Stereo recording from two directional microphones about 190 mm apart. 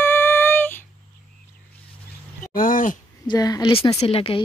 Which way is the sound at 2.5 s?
45° left (ahead or behind).